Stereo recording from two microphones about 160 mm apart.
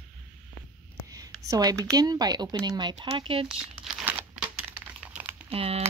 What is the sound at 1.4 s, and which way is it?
Speech, 20° right (ahead or behind).